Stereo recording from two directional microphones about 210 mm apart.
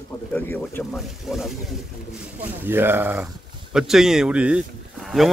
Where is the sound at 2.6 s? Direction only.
10° right (ahead or behind).